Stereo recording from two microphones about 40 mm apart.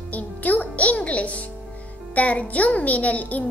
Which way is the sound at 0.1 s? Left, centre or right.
Left.